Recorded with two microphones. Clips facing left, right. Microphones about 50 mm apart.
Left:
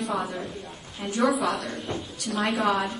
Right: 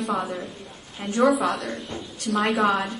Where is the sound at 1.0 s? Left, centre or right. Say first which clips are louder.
Right 4 dB; right.